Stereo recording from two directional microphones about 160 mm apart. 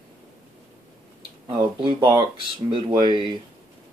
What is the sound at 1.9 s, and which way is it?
Speech, 30° right (ahead or behind).